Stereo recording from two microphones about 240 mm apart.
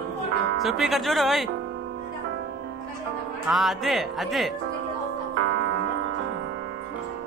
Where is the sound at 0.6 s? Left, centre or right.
Centre.